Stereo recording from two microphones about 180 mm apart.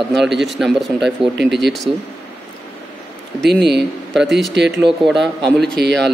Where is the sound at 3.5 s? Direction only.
70° right (ahead or behind).